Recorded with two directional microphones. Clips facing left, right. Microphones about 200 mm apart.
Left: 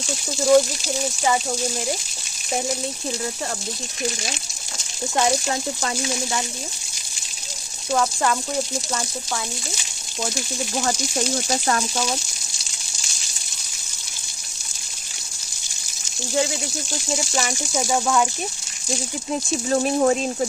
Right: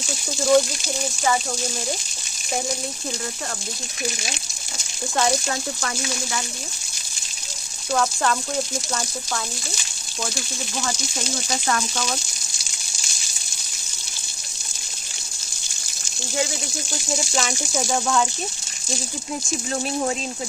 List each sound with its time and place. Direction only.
0.4 s speech: 5° left (ahead or behind)
5.1 s speech: 15° left (ahead or behind)
7.9 s speech: 10° left (ahead or behind)
11.4 s speech: 30° left (ahead or behind)
17.4 s speech: 10° left (ahead or behind)
19.7 s speech: 45° left (ahead or behind)